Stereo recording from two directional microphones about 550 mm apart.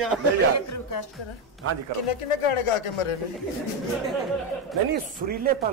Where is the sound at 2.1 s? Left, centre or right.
Left.